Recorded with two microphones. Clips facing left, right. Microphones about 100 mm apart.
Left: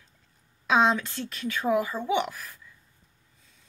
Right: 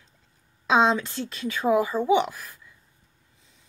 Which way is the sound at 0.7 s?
25° right (ahead or behind).